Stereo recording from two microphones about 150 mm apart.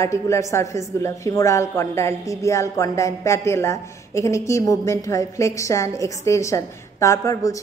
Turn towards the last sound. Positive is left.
turn(degrees=20)  # may be behind; listen again after turning